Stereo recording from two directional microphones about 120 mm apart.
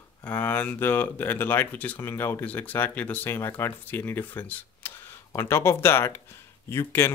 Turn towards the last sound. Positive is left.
turn(degrees=20)  # may be behind; listen again after turning